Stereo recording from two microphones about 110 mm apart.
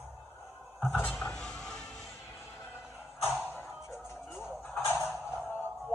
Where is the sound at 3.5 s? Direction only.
25° left (ahead or behind).